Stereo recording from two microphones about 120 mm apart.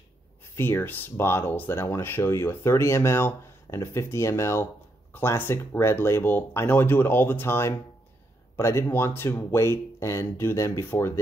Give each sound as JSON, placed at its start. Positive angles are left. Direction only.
{"t": 0.6, "sound": "speech", "side_deg": 20}